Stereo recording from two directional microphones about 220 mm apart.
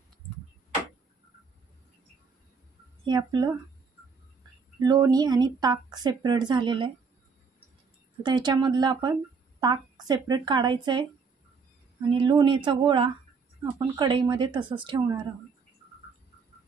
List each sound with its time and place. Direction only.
3.1 s speech: 20° right (ahead or behind)
4.8 s a woman's voice: 15° right (ahead or behind)
8.2 s a woman's voice: 20° right (ahead or behind)